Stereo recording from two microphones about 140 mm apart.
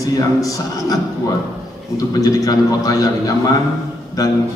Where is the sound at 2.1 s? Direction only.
25° left (ahead or behind).